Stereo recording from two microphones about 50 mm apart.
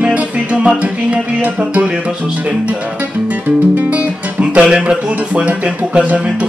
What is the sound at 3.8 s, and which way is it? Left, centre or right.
Speech, right.